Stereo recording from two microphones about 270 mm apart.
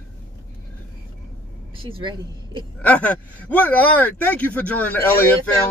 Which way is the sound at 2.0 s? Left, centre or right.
Centre.